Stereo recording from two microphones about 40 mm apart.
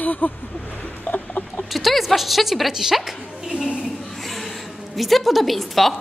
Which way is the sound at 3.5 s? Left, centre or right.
Right.